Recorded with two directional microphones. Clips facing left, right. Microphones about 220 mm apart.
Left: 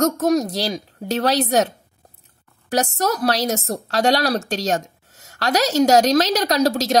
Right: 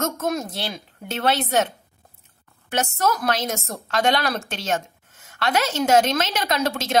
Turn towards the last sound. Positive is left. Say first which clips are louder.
# left 5 dB
turn(degrees=40)  # may be behind; listen again after turning